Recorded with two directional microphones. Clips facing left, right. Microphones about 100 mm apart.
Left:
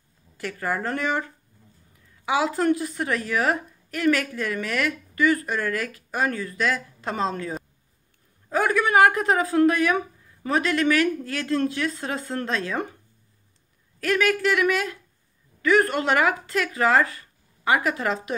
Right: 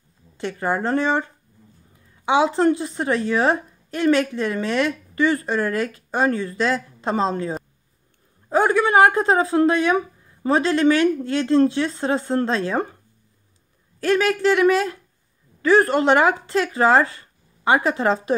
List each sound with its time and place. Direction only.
0.4 s a woman's voice: 25° right (ahead or behind)
13.9 s a woman's voice: 30° right (ahead or behind)